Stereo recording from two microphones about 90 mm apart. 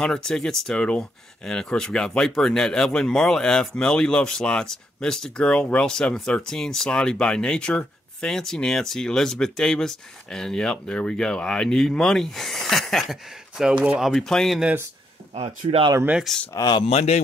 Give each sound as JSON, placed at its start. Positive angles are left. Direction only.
{"t": 0.0, "sound": "speech", "side_deg": 5}
{"t": 15.4, "sound": "speech", "side_deg": -90}
{"t": 16.3, "sound": "speech", "side_deg": 0}
{"t": 16.7, "sound": "speech", "side_deg": 90}